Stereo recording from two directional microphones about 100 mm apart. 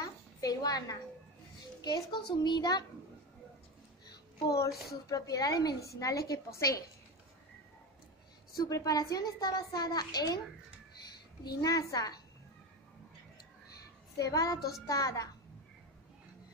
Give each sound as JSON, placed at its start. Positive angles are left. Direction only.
{"t": 0.0, "sound": "a sound", "side_deg": 40}
{"t": 1.8, "sound": "a child's voice", "side_deg": 45}
{"t": 5.1, "sound": "a child's voice", "side_deg": 35}
{"t": 8.5, "sound": "a child's voice", "side_deg": 35}
{"t": 11.4, "sound": "a child's voice", "side_deg": 35}
{"t": 14.1, "sound": "a child's voice", "side_deg": 35}